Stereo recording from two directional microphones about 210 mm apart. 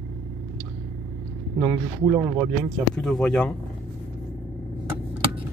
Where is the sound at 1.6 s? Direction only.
15° right (ahead or behind).